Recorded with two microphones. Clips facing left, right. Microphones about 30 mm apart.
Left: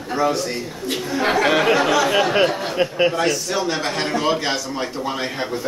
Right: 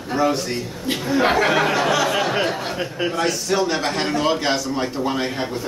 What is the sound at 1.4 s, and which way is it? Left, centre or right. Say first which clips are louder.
Speech: left 2 dB; centre.